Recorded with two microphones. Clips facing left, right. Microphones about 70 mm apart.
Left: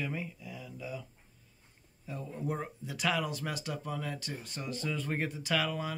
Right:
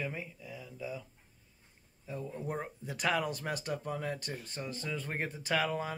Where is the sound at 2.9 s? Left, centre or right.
Right.